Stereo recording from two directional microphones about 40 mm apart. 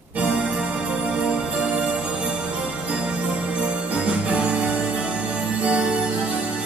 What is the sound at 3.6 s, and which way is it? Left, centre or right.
Music, right.